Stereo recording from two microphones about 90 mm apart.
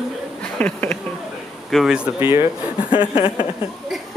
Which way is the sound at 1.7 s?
Centre (ahead or behind).